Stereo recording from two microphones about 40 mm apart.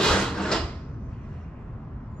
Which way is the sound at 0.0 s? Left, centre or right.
Centre.